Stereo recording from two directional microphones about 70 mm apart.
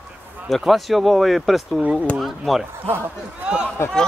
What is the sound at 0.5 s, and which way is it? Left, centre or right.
Speech, centre.